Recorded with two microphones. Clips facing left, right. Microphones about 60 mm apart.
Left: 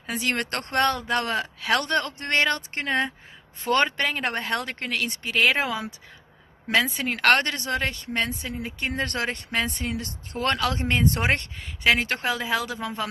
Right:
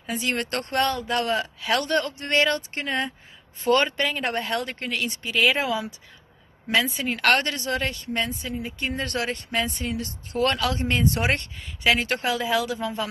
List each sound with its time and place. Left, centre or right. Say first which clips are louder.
0.0 s speech: even; left